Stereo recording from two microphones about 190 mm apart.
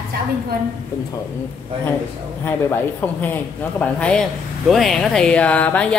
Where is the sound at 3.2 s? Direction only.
5° left (ahead or behind).